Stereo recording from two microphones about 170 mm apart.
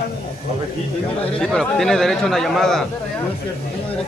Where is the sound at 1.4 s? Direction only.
5° left (ahead or behind).